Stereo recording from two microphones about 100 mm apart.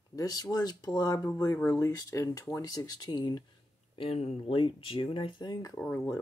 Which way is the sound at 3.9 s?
85° left.